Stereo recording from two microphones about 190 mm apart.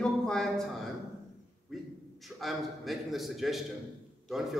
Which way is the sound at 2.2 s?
Centre (ahead or behind).